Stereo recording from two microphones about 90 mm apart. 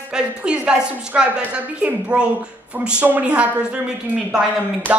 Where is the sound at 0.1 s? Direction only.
10° right (ahead or behind).